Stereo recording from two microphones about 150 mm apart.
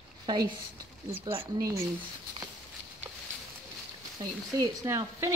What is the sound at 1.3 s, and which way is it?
Speech, 20° right (ahead or behind).